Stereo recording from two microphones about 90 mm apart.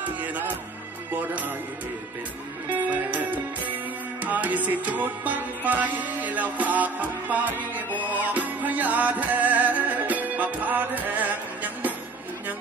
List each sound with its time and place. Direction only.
0.0 s speech: 20° right (ahead or behind)
1.1 s music: 20° right (ahead or behind)
2.7 s music: 15° right (ahead or behind)